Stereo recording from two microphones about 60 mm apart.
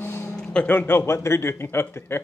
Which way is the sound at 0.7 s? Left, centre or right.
Left.